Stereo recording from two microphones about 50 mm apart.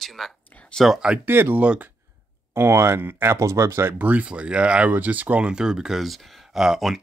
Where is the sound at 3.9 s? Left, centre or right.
Right.